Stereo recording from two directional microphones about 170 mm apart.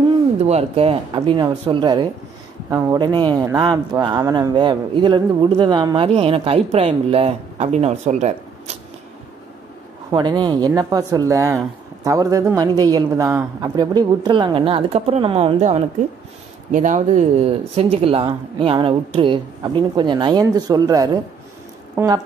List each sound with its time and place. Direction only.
0.4 s speech: 40° right (ahead or behind)
10.1 s speech: 25° right (ahead or behind)
16.7 s speech: 45° right (ahead or behind); by 22.2 s 20° right (ahead or behind)